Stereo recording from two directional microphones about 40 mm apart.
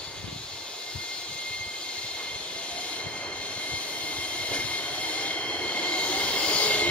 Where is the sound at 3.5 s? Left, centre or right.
Left.